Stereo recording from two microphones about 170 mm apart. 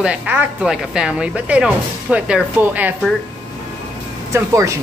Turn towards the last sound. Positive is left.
turn(degrees=-15)  # may be behind; listen again after turning